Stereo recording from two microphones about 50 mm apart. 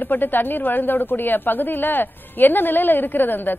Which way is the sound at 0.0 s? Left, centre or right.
Left.